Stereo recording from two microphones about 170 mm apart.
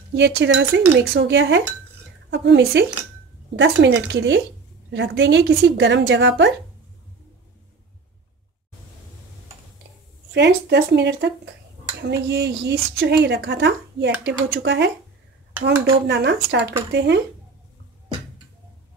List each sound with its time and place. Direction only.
0.1 s speech: 90° right
10.3 s a woman's voice: 90° right
16.1 s a woman's voice: 80° right